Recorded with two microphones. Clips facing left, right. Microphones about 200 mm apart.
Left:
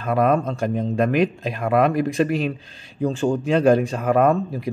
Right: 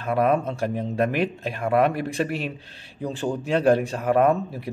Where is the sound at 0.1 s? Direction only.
5° right (ahead or behind).